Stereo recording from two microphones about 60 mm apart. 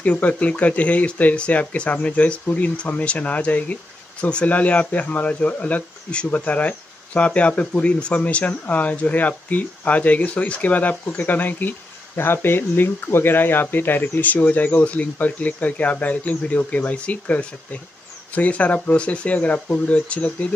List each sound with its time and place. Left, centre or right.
0.0 s speech: left